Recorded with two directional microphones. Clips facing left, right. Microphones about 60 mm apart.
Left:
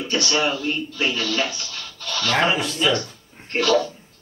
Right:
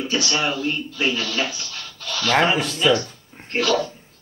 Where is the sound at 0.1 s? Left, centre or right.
Centre.